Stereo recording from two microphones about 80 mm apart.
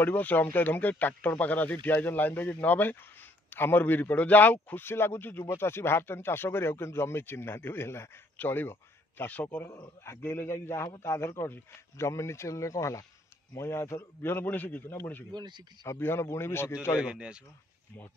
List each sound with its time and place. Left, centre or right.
0.0 s speech: left
10.0 s speech: left
15.3 s speech: right
16.0 s speech: left
17.0 s speech: centre